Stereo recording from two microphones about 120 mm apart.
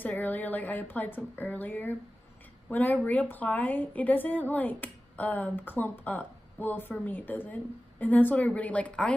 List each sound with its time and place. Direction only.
0.0 s a woman's voice: 15° left (ahead or behind)